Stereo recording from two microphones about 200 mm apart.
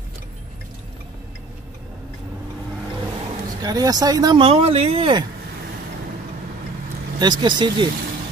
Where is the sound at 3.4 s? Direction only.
20° right (ahead or behind).